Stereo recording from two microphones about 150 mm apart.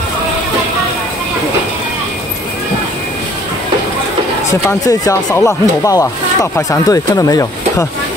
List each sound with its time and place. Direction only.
4.5 s speech: 20° left (ahead or behind)